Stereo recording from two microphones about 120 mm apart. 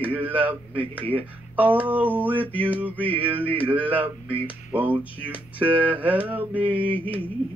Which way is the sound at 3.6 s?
15° right (ahead or behind).